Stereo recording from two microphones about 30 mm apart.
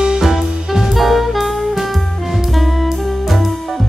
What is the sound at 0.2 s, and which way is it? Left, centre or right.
Music, centre.